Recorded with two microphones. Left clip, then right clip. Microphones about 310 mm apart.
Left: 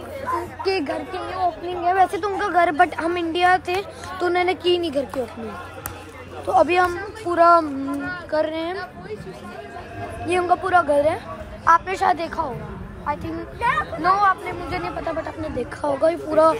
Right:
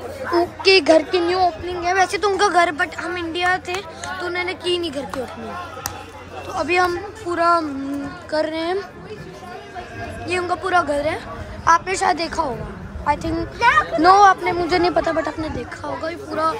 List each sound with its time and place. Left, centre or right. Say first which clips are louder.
0.7 s speech: right 11 dB; centre
1.7 s a woman's voice: even; centre
2.8 s speech: left 4 dB; centre
6.5 s a woman's voice: left 2 dB; centre
10.2 s a woman's voice: left 2 dB; centre
13.6 s a child's voice: right 6 dB; right
14.0 s speech: right 6 dB; centre
15.8 s speech: left 9 dB; centre